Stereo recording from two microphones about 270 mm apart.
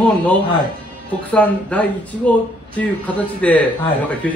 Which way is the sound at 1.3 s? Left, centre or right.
Centre.